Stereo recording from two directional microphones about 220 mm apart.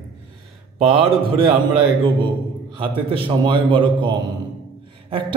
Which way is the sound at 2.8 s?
25° right (ahead or behind).